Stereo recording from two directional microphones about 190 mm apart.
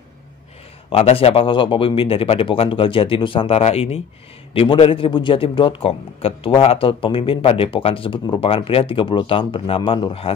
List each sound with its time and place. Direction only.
0.8 s a man's voice: 30° left (ahead or behind)